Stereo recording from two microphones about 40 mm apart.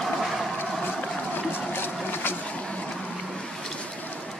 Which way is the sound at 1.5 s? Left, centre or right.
Left.